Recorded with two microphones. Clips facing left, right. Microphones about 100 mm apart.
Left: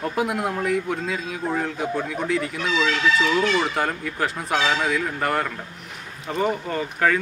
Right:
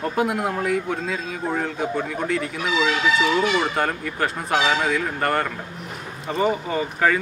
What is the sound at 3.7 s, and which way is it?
Speech, centre (ahead or behind).